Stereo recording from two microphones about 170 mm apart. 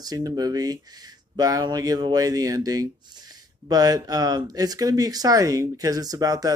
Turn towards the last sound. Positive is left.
turn(degrees=-20)  # may be behind; listen again after turning